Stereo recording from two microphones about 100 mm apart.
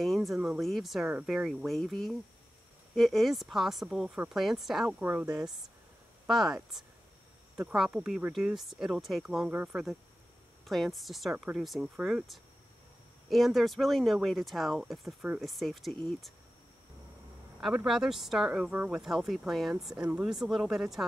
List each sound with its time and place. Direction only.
0.0 s speech: centre (ahead or behind)
4.8 s speech: 20° right (ahead or behind)
6.2 s speech: centre (ahead or behind)
9.5 s speech: 15° right (ahead or behind)
10.6 s speech: centre (ahead or behind)
17.8 s speech: 5° right (ahead or behind)